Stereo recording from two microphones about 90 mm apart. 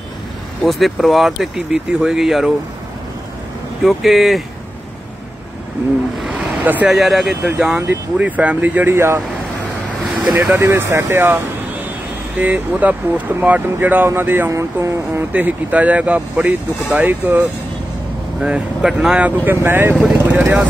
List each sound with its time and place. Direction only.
0.7 s speech: centre (ahead or behind)
3.8 s speech: centre (ahead or behind)
6.1 s a sound: 10° right (ahead or behind)
6.9 s speech: 5° right (ahead or behind); by 9.2 s 30° right (ahead or behind)
10.5 s speech: 30° right (ahead or behind)
15.3 s speech: 15° right (ahead or behind)
18.4 s speech: 10° right (ahead or behind)